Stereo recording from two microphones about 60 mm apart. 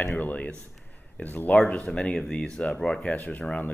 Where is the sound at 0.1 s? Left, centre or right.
Left.